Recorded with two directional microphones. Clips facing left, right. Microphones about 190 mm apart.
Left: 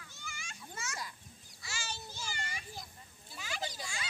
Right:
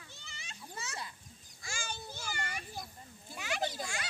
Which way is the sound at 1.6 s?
50° right (ahead or behind).